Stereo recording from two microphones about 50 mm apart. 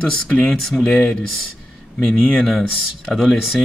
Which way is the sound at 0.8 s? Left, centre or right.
Centre.